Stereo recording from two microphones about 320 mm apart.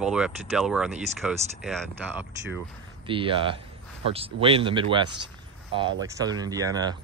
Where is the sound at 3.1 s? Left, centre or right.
Centre.